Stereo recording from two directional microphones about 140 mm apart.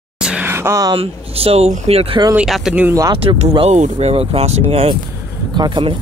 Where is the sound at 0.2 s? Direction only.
5° right (ahead or behind).